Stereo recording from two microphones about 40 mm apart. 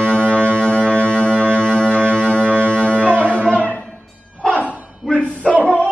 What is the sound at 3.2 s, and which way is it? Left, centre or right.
Music, left.